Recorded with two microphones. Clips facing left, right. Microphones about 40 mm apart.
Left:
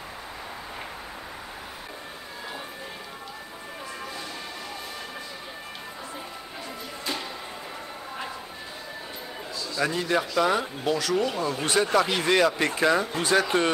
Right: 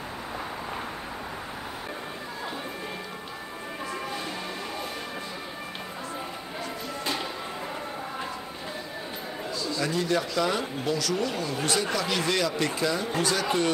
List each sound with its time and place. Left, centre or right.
9.8 s speech: left
12.8 s speech: left
13.2 s speech: left